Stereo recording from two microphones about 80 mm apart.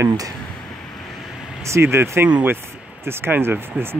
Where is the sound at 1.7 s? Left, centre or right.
Right.